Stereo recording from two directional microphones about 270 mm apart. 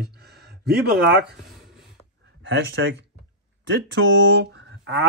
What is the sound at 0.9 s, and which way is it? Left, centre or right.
Speech, right.